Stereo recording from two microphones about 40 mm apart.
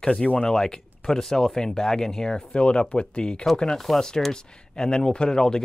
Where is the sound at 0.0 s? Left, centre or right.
Centre.